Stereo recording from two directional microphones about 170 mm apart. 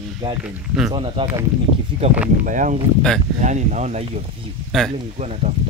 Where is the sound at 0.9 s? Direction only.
30° right (ahead or behind).